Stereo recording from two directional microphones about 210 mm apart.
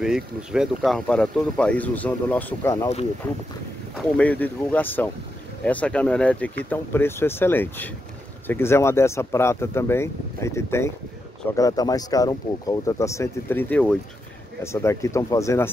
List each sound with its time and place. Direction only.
0.0 s speech: 5° right (ahead or behind); by 2.9 s 15° left (ahead or behind)
4.2 s speech: 5° left (ahead or behind)